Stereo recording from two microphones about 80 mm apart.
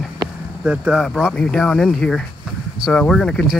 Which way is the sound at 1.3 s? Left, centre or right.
Centre.